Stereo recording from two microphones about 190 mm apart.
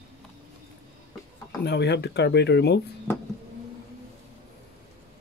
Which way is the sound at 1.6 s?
65° left (ahead or behind).